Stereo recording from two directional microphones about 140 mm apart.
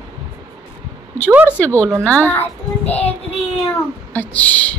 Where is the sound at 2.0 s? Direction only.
10° left (ahead or behind).